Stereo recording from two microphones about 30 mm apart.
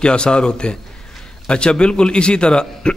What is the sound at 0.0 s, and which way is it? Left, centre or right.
A man's voice, left.